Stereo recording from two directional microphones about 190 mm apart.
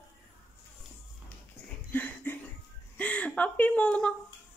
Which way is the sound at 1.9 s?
10° left (ahead or behind).